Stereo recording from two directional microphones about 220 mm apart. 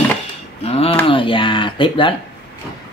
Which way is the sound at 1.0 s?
25° left (ahead or behind).